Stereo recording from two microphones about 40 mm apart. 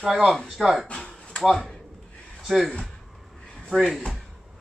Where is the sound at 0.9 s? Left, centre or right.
Left.